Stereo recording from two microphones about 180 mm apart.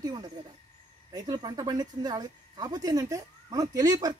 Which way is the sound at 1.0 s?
20° right (ahead or behind).